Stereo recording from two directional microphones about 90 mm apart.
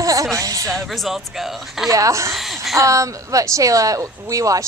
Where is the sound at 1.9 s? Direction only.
35° right (ahead or behind).